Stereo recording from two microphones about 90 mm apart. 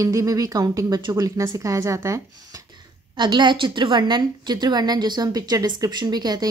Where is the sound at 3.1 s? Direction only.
55° right (ahead or behind).